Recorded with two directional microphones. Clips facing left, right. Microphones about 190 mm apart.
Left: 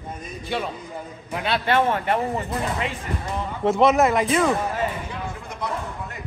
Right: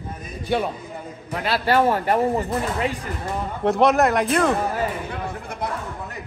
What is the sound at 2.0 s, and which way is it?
Speech, 40° right (ahead or behind).